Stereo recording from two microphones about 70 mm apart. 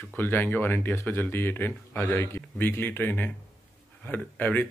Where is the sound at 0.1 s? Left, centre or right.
Left.